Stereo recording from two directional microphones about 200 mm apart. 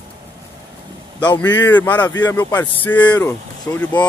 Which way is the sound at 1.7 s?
10° left (ahead or behind).